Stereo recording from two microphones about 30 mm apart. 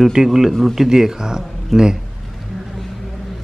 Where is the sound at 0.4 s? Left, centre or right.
Centre.